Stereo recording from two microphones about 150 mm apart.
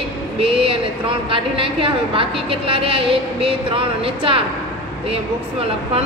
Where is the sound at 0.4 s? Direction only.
40° right (ahead or behind).